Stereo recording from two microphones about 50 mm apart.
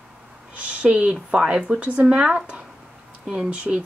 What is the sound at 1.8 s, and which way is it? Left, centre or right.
Speech, right.